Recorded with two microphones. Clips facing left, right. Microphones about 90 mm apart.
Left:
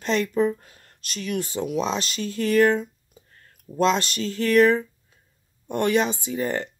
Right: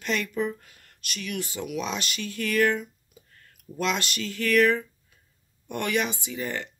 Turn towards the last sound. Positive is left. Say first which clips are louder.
# left 6 dB
turn(degrees=40)  # may be behind; listen again after turning